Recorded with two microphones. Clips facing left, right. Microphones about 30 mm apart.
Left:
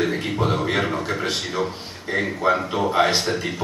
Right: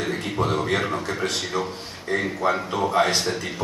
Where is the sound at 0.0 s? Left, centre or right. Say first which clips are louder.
Left 3 dB; centre.